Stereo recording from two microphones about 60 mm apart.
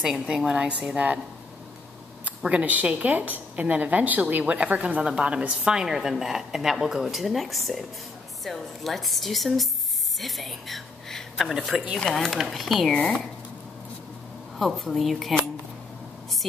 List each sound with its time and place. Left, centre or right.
0.0 s a woman's voice: centre
2.5 s a woman's voice: right; by 12.9 s centre
14.6 s a woman's voice: centre